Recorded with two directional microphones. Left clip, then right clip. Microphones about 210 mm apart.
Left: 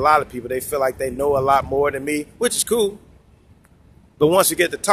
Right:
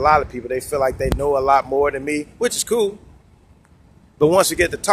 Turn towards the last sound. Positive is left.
turn(degrees=5)  # may be behind; listen again after turning